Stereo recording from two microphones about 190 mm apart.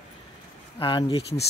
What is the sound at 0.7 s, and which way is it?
Speech, 25° left (ahead or behind).